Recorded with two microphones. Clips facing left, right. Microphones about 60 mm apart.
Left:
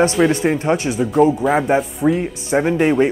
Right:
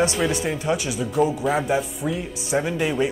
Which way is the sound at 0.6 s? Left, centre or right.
Left.